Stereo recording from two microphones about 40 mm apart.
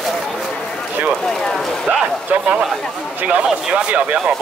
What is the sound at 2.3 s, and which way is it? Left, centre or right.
Speech, right.